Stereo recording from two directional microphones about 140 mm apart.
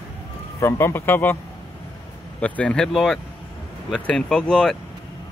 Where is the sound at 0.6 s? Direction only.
15° left (ahead or behind).